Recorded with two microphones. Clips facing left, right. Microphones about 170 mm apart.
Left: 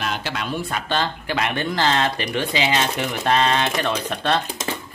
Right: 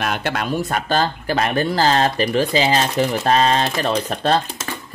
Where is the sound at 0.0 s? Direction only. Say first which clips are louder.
Right 4 dB; 55° right (ahead or behind).